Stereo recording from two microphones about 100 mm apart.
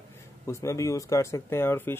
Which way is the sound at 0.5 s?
30° left (ahead or behind).